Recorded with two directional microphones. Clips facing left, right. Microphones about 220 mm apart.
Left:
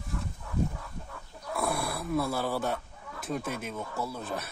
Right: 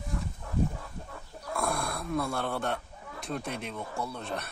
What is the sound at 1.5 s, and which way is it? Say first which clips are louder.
Speech: left 1 dB; 5° left (ahead or behind).